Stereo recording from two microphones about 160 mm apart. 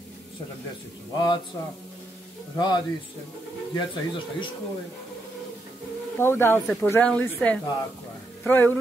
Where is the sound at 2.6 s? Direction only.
25° left (ahead or behind).